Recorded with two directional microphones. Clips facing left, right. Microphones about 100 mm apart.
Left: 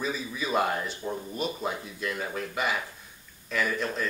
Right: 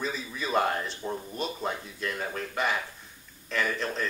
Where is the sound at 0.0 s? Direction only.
5° left (ahead or behind).